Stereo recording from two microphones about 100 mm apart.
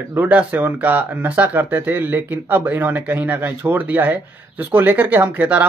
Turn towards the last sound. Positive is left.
turn(degrees=-15)  # may be behind; listen again after turning